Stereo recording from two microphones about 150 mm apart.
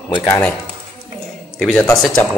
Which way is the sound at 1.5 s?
5° left (ahead or behind).